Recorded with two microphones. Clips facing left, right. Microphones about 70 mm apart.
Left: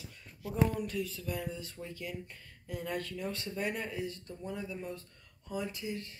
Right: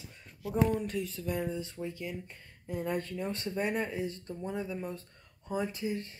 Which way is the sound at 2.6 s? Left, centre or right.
Right.